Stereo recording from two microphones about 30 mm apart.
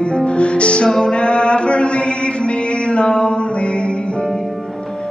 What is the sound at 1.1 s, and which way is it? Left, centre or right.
Mantra, left.